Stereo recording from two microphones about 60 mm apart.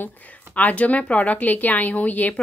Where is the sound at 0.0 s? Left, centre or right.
Left.